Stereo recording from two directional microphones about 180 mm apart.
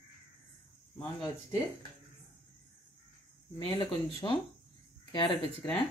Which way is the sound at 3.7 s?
30° left (ahead or behind).